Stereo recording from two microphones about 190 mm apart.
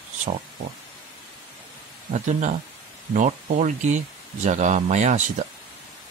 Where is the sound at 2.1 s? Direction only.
40° right (ahead or behind).